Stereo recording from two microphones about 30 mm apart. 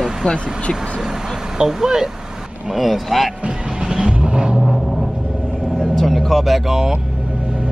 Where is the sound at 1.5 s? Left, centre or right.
Right.